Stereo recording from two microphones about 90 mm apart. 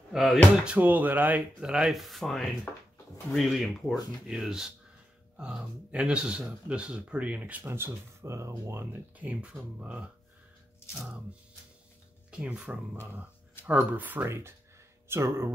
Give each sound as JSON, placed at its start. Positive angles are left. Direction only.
{"t": 0.1, "sound": "speech", "side_deg": 0}
{"t": 0.7, "sound": "speech", "side_deg": -15}
{"t": 2.7, "sound": "speech", "side_deg": 20}
{"t": 3.3, "sound": "speech", "side_deg": 0}
{"t": 7.6, "sound": "speech", "side_deg": -25}
{"t": 8.9, "sound": "speech", "side_deg": -15}
{"t": 12.3, "sound": "speech", "side_deg": -10}